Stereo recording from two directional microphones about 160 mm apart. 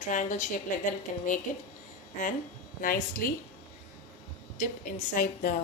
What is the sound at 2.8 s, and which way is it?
Speech, 60° left (ahead or behind).